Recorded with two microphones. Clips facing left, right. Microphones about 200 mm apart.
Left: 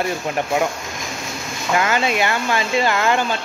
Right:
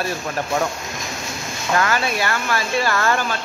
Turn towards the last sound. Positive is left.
turn(degrees=20)  # may be behind; listen again after turning